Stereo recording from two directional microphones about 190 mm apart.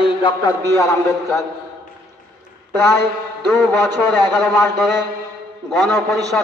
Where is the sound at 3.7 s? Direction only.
Centre (ahead or behind).